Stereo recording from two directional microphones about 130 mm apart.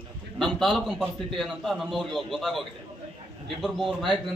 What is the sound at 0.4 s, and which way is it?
A man's voice, centre (ahead or behind).